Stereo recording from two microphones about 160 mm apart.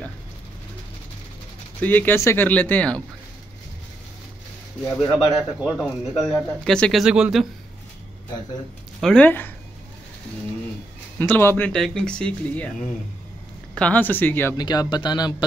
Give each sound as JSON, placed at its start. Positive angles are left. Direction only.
{"t": 1.8, "sound": "speech", "side_deg": 10}
{"t": 4.8, "sound": "speech", "side_deg": 25}
{"t": 5.6, "sound": "speech", "side_deg": -5}
{"t": 6.1, "sound": "speech", "side_deg": 20}
{"t": 6.6, "sound": "speech", "side_deg": 5}
{"t": 9.0, "sound": "speech", "side_deg": 5}
{"t": 11.1, "sound": "speech", "side_deg": 15}
{"t": 13.7, "sound": "speech", "side_deg": 10}
{"t": 14.6, "sound": "speech", "side_deg": 25}